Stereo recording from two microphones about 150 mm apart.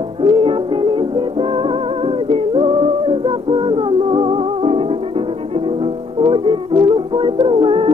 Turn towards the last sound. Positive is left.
turn(degrees=-35)  # may be behind; listen again after turning